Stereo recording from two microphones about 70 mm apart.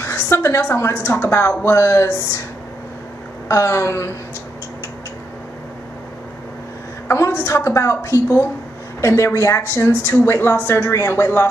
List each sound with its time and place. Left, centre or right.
0.0 s a woman's voice: left
3.4 s a sound: left
7.1 s a woman's voice: left